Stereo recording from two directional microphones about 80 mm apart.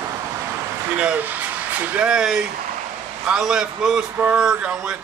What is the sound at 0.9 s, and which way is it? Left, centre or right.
A man's voice, right.